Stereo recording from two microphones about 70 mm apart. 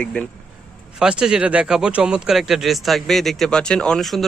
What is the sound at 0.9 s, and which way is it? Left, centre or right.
Speech, centre.